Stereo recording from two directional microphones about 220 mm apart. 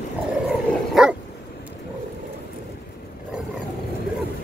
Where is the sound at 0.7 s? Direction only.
5° left (ahead or behind).